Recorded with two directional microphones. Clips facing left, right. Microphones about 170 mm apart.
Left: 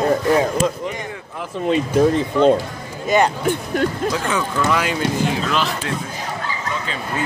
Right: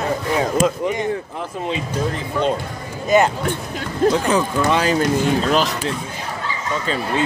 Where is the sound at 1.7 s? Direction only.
55° left (ahead or behind).